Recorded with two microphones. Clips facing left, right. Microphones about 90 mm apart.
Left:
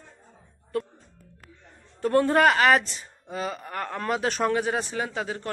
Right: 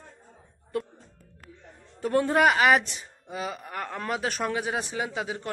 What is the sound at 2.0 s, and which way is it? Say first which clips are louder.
Speech: left 2 dB; 10° right (ahead or behind).